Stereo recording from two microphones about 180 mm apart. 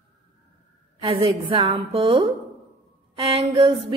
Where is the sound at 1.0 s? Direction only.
30° right (ahead or behind).